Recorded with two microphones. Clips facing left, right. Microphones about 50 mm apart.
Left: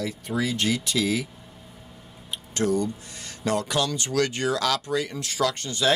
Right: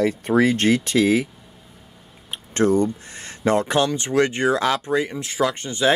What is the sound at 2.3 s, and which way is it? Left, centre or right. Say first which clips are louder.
Speech: right 6 dB; right.